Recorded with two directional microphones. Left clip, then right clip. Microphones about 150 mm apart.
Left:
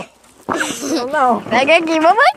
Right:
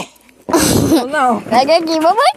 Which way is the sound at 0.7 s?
85° right.